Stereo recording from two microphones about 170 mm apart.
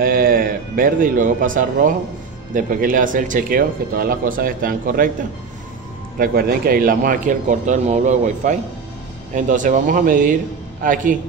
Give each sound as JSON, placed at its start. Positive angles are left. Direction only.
{"t": 0.0, "sound": "speech", "side_deg": -55}
{"t": 6.1, "sound": "speech", "side_deg": -60}